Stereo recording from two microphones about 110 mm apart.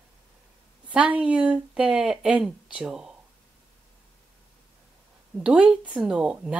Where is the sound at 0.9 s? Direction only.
10° right (ahead or behind).